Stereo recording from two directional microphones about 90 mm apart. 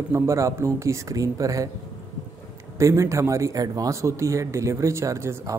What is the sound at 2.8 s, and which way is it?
Speech, 35° right (ahead or behind).